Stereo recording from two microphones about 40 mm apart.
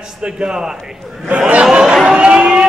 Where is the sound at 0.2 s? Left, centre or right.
Right.